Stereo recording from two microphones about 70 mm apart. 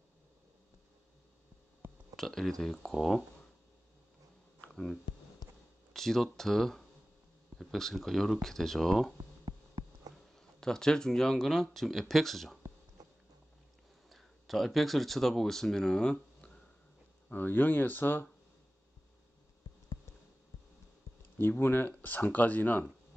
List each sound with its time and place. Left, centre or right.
2.1 s speech: centre
5.9 s speech: centre
9.4 s a sound: right
10.1 s speech: centre
14.0 s speech: centre
17.3 s speech: left
21.4 s speech: left